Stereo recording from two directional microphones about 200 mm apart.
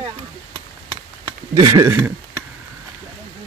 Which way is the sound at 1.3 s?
20° right (ahead or behind).